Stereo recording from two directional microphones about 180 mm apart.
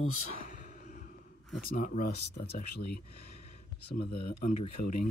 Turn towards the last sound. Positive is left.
turn(degrees=50)  # may be behind; listen again after turning